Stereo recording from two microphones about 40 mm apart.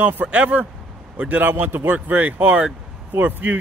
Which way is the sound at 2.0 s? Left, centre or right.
Right.